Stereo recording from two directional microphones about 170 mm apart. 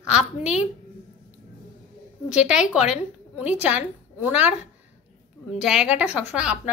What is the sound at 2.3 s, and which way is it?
A woman's voice, 5° right (ahead or behind).